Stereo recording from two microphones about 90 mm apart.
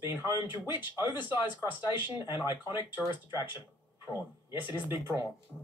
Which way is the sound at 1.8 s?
55° left (ahead or behind).